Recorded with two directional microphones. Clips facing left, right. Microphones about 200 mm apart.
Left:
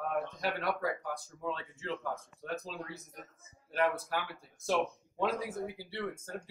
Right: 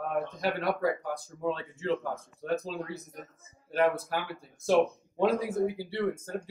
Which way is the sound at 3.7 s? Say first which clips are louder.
Right 5 dB; 30° right (ahead or behind).